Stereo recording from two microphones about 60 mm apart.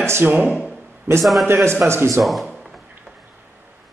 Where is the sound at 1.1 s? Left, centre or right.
Right.